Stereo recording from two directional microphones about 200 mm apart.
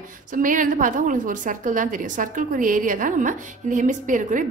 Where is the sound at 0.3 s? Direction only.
40° right (ahead or behind).